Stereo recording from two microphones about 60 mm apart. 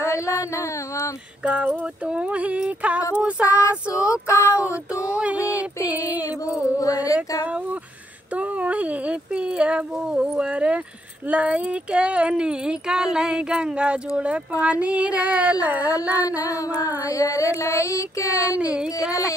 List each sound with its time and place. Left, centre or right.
0.0 s a sound: left
1.4 s speech: right
3.9 s a sound: centre
4.3 s speech: left
5.0 s speech: right
6.8 s music: left
8.4 s speech: right
17.1 s child singing: left
18.6 s a sound: centre